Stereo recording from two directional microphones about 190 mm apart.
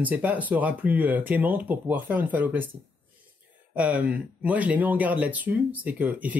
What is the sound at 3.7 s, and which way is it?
Speech, 5° right (ahead or behind).